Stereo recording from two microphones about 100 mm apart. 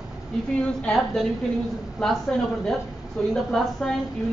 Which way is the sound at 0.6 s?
5° left (ahead or behind).